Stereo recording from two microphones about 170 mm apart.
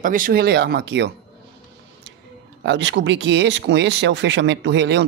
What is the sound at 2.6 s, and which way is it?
Speech, 90° right.